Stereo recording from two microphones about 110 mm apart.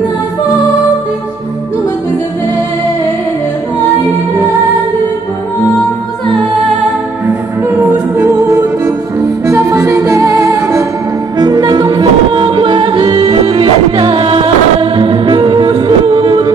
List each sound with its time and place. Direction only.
7.6 s music: 20° right (ahead or behind)
11.3 s music: 40° right (ahead or behind)